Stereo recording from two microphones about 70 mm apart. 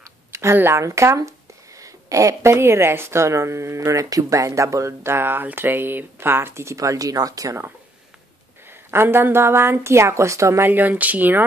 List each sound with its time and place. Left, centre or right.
0.0 s a sound: right
0.6 s a woman's voice: right
0.8 s speech: right
3.8 s speech: right
8.6 s a woman's voice: right
10.6 s speech: right